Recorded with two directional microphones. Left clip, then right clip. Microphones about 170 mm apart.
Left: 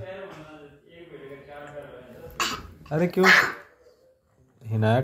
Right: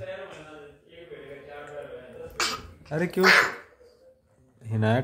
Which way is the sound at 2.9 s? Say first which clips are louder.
Left 3 dB; 10° right (ahead or behind).